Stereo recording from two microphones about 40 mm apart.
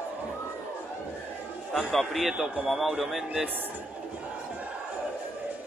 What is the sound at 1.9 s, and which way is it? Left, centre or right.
Speech, centre.